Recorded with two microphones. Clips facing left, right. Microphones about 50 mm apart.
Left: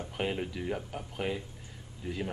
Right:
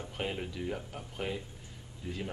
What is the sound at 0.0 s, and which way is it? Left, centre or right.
Speech, centre.